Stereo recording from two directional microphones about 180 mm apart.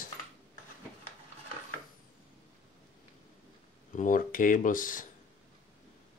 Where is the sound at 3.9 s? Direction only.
45° left (ahead or behind).